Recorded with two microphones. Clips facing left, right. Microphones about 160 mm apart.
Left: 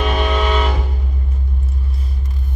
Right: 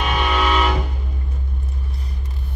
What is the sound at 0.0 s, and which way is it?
Music, 40° left (ahead or behind).